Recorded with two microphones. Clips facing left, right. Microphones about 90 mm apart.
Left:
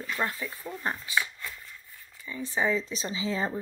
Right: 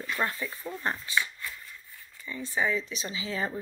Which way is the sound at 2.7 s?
35° left (ahead or behind).